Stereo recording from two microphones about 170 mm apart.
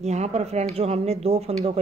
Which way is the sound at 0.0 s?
40° right (ahead or behind).